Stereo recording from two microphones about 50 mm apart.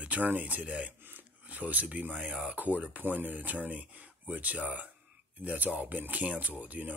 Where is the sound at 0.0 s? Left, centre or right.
Right.